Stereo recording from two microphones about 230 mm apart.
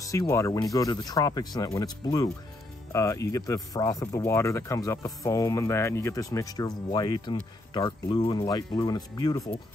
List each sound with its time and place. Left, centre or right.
0.0 s speech: centre